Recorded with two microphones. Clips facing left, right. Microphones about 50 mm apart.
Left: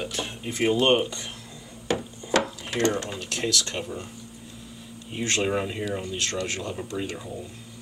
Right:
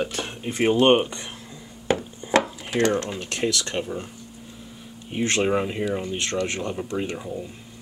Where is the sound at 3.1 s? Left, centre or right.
Right.